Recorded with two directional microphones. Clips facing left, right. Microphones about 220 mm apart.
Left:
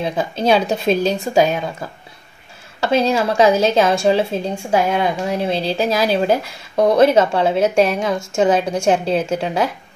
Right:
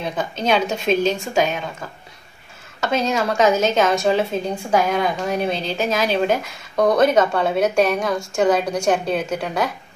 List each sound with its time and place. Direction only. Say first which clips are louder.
0.0 s a woman's voice: left 4 dB; 30° left (ahead or behind)